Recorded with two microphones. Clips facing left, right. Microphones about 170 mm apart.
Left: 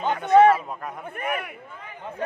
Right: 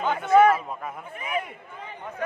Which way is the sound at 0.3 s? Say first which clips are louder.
Left 2 dB; 30° left (ahead or behind).